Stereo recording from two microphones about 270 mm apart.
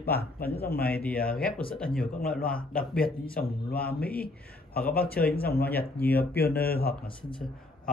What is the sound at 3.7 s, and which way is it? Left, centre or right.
Speech, left.